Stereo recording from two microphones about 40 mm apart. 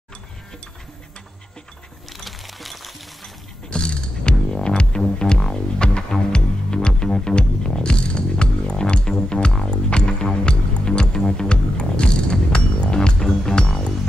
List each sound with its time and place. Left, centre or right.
2.1 s music: centre
3.7 s music: left